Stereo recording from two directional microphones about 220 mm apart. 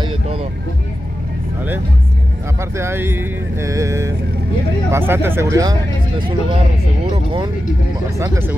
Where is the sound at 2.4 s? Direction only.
15° right (ahead or behind).